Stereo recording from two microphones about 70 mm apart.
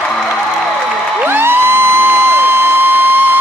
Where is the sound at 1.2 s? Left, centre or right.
Right.